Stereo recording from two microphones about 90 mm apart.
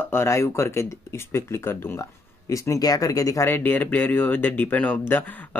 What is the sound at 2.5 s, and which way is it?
Speech, 40° left (ahead or behind).